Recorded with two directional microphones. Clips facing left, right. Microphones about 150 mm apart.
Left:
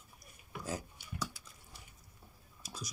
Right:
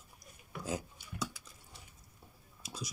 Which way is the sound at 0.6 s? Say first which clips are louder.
Right 2 dB; 20° right (ahead or behind).